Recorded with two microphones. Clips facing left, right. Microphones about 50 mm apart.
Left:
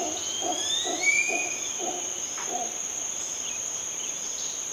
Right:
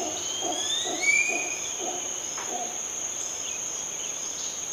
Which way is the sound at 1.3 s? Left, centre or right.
Centre.